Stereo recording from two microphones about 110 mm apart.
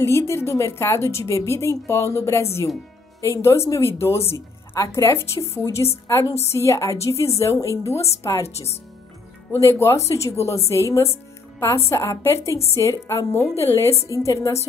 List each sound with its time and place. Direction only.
0.0 s a woman's voice: 25° left (ahead or behind)
13.7 s a woman's voice: 25° left (ahead or behind)